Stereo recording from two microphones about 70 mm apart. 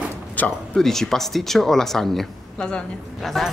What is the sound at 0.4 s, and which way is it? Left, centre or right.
Speech, left.